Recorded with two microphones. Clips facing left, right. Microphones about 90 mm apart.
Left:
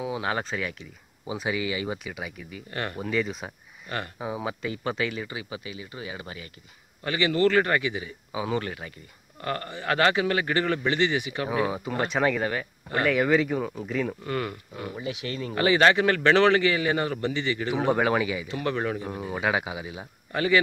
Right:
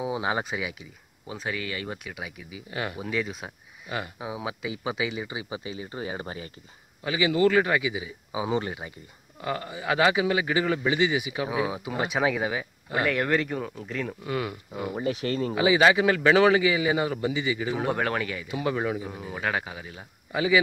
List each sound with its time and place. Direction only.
0.0 s speech: 20° right (ahead or behind)
1.2 s speech: 5° left (ahead or behind); by 6.5 s 35° right (ahead or behind)
7.0 s speech: 5° right (ahead or behind)
9.4 s speech: 5° right (ahead or behind)
15.0 s speech: 40° right (ahead or behind)
15.5 s speech: 5° right (ahead or behind)
18.5 s speech: 10° right (ahead or behind); by 20.1 s 10° left (ahead or behind)
20.3 s speech: 10° right (ahead or behind)